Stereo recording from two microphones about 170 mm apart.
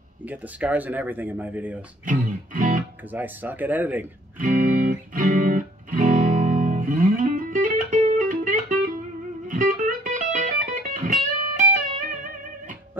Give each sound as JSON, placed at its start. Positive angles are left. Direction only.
{"t": 0.3, "sound": "speech", "side_deg": -10}
{"t": 2.0, "sound": "music", "side_deg": -50}
{"t": 3.1, "sound": "speech", "side_deg": -10}
{"t": 4.4, "sound": "music", "side_deg": -50}